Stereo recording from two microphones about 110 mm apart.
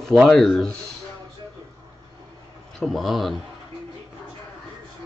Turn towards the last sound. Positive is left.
turn(degrees=0)  # may be behind; listen again after turning